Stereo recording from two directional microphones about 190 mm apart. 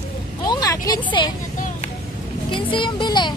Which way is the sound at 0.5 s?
20° left (ahead or behind).